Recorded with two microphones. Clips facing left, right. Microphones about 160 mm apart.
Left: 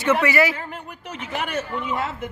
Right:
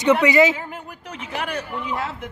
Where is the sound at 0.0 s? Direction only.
15° right (ahead or behind).